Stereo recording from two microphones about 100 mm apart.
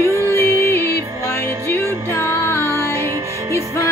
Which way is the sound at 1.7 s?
25° left (ahead or behind).